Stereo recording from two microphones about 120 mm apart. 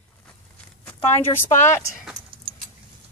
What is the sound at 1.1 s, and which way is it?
Speech, 20° left (ahead or behind).